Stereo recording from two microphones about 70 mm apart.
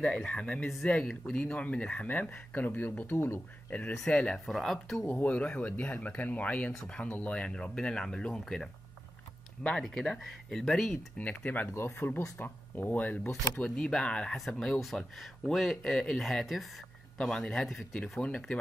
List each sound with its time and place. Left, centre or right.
0.0 s speech: centre
3.1 s speech: left
4.1 s speech: centre
4.5 s speech: centre
5.0 s speech: left
6.7 s speech: centre
9.8 s speech: centre
11.1 s speech: left
11.7 s speech: left
13.7 s speech: centre
14.3 s speech: centre
17.9 s speech: centre